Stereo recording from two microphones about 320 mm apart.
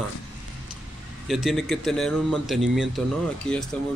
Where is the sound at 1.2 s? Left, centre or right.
Centre.